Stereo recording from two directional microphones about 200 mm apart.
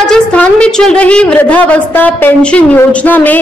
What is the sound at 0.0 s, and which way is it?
A woman's voice, 5° left (ahead or behind).